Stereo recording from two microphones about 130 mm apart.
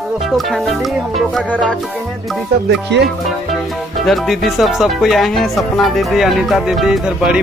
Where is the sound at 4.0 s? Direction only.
Centre (ahead or behind).